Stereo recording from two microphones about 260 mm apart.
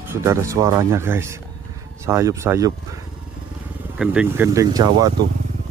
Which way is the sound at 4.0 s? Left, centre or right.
Centre.